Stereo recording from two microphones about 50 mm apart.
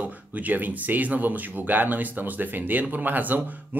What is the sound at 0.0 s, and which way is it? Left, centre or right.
Speech, right.